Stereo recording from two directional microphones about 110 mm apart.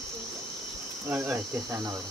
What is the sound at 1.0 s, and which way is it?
Cricket, 15° right (ahead or behind).